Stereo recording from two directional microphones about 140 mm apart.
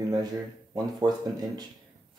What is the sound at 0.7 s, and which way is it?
Speech, 30° right (ahead or behind).